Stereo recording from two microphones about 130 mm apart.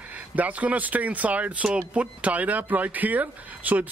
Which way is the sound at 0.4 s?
10° right (ahead or behind).